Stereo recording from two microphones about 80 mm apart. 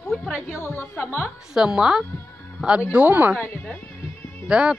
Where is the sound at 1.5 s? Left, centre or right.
Centre.